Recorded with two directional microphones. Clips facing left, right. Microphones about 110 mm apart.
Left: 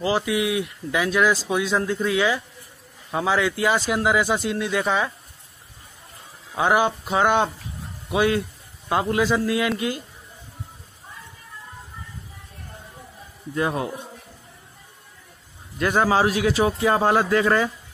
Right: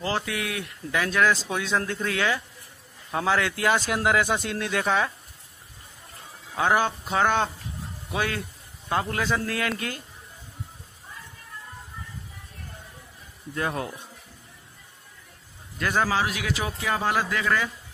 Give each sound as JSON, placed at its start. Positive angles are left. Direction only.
{"t": 0.0, "sound": "a man's voice", "side_deg": 10}
{"t": 6.5, "sound": "speech", "side_deg": 15}
{"t": 13.6, "sound": "speech", "side_deg": 15}
{"t": 15.8, "sound": "a man's voice", "side_deg": 25}